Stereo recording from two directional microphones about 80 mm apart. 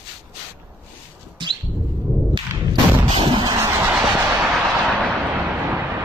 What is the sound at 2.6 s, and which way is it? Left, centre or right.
Artillery fire, right.